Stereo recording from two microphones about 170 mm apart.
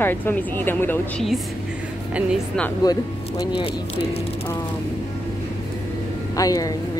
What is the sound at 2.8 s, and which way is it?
Speech, 20° left (ahead or behind).